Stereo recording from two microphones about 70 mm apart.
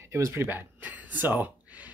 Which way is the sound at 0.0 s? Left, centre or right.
Right.